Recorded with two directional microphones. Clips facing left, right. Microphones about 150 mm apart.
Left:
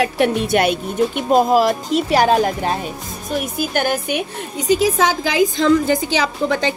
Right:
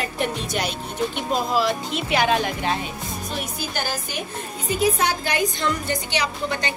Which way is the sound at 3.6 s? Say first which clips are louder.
Left 9 dB; 55° left (ahead or behind).